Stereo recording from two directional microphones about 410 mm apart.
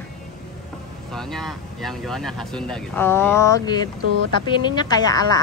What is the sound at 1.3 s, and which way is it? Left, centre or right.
Speech, centre.